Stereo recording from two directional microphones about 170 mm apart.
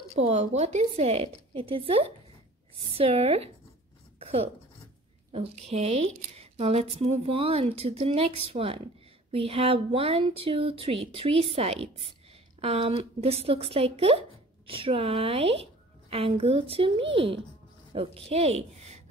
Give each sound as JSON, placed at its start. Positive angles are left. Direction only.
{"t": 0.2, "sound": "speech", "side_deg": -40}
{"t": 4.2, "sound": "a sound", "side_deg": -35}
{"t": 5.3, "sound": "a woman's voice", "side_deg": -35}